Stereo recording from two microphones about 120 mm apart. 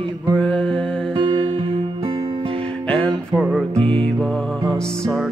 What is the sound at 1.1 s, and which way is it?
Music, 45° right (ahead or behind).